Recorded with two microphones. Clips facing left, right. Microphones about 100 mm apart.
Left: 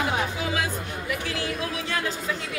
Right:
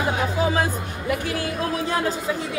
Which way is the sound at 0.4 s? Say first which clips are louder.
Right 6 dB; 40° right (ahead or behind).